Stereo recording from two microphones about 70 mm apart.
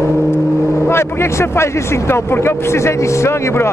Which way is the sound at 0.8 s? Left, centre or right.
Left.